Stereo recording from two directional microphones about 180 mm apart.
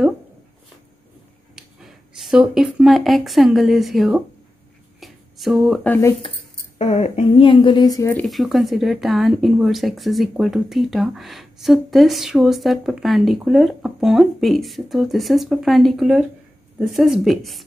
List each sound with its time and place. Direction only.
1.5 s speech: centre (ahead or behind)
5.0 s a sound: centre (ahead or behind)
5.9 s speech: 15° left (ahead or behind)
6.8 s speech: 40° left (ahead or behind); by 8.3 s 15° left (ahead or behind)
8.3 s speech: centre (ahead or behind)